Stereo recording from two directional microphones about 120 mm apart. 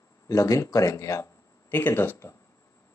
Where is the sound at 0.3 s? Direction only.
25° left (ahead or behind).